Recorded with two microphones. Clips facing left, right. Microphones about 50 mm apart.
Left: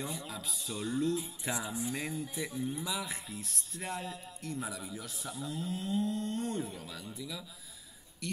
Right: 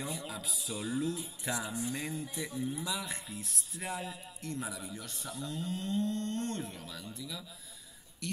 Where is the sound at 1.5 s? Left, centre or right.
Centre.